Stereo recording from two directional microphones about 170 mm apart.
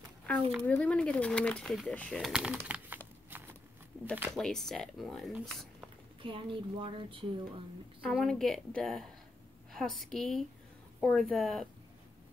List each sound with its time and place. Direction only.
0.7 s speech: 5° left (ahead or behind)
2.3 s speech: 5° right (ahead or behind)
4.0 s speech: 10° right (ahead or behind)
4.4 s speech: 5° left (ahead or behind)
6.2 s a woman's voice: 30° right (ahead or behind)
8.0 s a woman's voice: centre (ahead or behind)